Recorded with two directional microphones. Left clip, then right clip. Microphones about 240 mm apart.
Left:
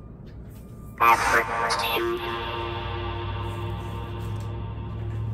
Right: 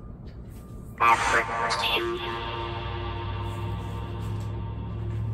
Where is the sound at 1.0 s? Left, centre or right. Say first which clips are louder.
Left 2 dB; centre.